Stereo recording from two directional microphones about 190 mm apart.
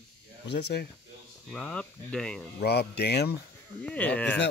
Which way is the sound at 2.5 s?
60° left (ahead or behind).